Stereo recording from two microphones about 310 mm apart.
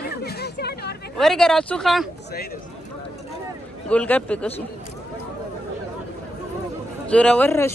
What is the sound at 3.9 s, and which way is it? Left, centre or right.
Speech, centre.